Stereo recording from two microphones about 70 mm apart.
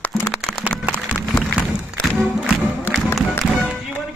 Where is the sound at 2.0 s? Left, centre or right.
Centre.